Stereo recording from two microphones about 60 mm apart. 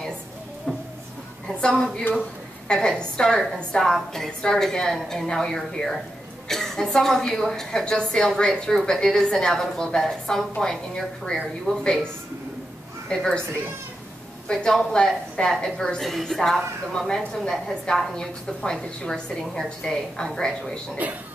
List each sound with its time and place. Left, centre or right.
0.7 s a sound: centre
1.5 s a woman's voice: centre
13.1 s a woman's voice: centre
14.5 s a woman's voice: centre
21.0 s speech: right